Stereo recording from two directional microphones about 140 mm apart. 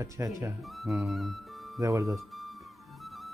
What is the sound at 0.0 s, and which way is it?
Speech, 20° right (ahead or behind).